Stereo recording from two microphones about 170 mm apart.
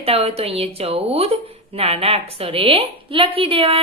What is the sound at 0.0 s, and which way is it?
Speech, 35° right (ahead or behind).